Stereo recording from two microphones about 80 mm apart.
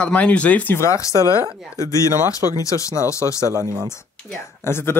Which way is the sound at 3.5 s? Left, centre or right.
Right.